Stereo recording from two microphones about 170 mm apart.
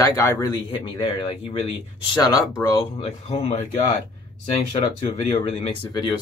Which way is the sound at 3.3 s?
40° left (ahead or behind).